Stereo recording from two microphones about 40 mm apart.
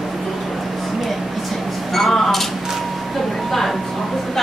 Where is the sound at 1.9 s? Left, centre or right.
Centre.